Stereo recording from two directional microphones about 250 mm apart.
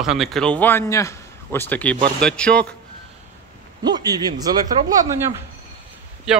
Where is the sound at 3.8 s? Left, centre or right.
Centre.